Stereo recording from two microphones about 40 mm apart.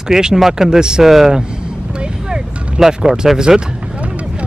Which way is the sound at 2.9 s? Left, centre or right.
Centre.